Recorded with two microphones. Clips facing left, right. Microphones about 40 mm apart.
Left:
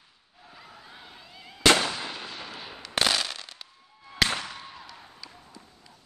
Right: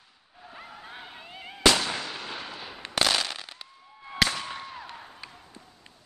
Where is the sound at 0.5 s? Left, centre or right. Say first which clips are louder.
Right 5 dB; right.